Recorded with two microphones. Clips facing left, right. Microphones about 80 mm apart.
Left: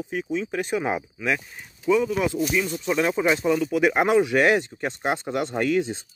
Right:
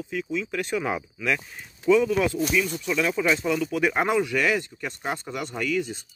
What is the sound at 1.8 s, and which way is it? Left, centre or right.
Speech, centre.